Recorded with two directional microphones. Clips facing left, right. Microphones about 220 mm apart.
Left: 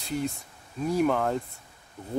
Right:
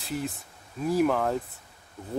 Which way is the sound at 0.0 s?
Centre (ahead or behind).